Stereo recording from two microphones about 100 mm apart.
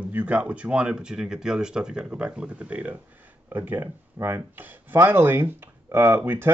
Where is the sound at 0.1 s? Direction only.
15° right (ahead or behind).